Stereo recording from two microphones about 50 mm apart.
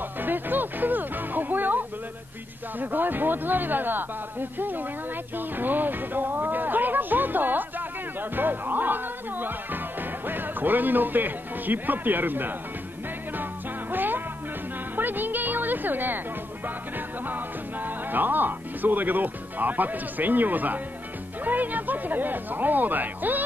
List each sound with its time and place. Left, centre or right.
0.2 s music: right
2.8 s speech: right
13.4 s music: right
17.3 s speech: right